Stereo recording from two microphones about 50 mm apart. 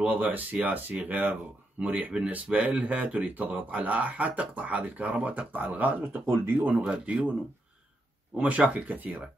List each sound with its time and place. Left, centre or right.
0.0 s speech: right
6.2 s speech: right
6.8 s speech: centre
8.4 s speech: right